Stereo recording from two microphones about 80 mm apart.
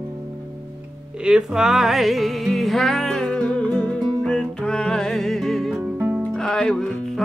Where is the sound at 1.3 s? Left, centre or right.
Centre.